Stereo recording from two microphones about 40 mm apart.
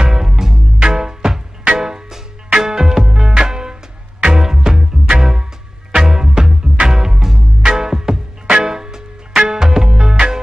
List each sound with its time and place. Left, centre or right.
0.0 s music: centre